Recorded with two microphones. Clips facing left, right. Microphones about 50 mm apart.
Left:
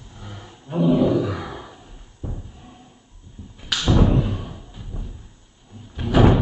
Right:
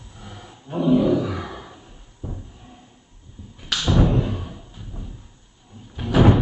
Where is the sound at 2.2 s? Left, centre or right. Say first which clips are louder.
Left 1 dB; left.